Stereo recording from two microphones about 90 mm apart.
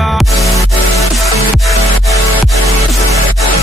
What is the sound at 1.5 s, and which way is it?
Music, centre (ahead or behind).